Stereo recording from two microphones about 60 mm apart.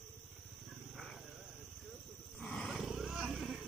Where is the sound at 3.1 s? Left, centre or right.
Centre.